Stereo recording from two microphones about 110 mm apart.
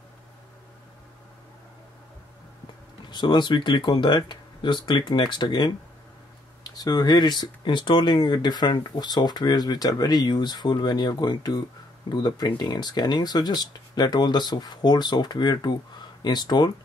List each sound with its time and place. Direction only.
3.1 s speech: 45° left (ahead or behind)
6.7 s speech: 35° left (ahead or behind)